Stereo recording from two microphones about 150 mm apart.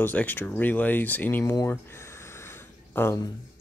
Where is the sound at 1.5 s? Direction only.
20° left (ahead or behind).